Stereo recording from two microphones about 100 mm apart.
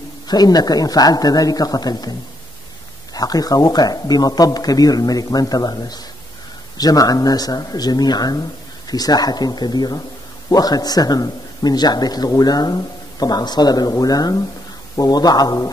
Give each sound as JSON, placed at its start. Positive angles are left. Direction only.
{"t": 0.3, "sound": "a man's voice", "side_deg": 40}